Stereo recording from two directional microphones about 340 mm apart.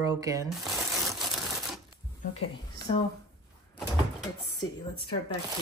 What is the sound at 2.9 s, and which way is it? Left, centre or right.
Speech, centre.